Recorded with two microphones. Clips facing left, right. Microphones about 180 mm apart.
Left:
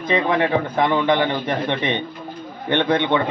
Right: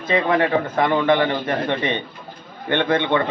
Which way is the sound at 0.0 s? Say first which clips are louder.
Even; 15° left (ahead or behind).